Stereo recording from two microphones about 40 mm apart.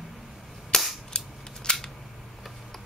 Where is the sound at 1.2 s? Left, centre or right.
Centre.